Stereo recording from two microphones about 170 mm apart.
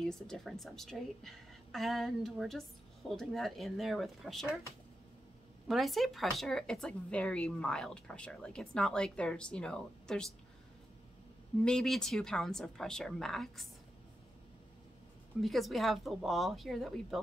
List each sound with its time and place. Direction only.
0.0 s speech: 5° left (ahead or behind)
5.7 s speech: centre (ahead or behind)
11.6 s speech: 5° left (ahead or behind)
15.4 s speech: centre (ahead or behind)